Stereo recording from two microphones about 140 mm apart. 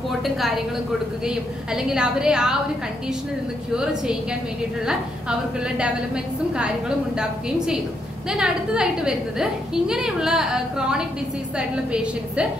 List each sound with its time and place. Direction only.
1.2 s a woman's voice: 5° right (ahead or behind)
3.7 s a woman's voice: 5° right (ahead or behind)
5.6 s a woman's voice: 5° right (ahead or behind)